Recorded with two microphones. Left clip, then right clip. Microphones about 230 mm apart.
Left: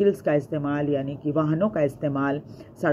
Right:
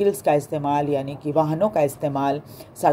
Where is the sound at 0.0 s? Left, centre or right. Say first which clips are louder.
Right 2 dB; right.